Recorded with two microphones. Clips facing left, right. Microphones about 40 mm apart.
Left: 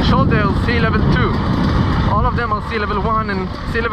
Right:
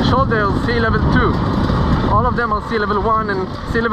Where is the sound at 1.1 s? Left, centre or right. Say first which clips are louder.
Right 1 dB; left.